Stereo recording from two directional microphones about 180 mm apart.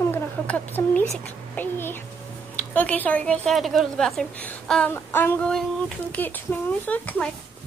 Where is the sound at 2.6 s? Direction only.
10° left (ahead or behind).